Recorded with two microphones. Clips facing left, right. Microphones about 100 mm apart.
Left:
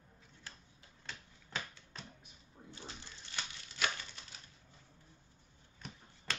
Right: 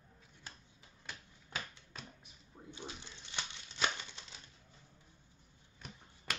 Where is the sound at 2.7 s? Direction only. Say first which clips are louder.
Right 3 dB; 20° right (ahead or behind).